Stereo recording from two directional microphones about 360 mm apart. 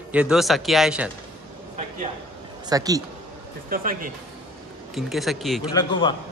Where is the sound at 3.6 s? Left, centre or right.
Right.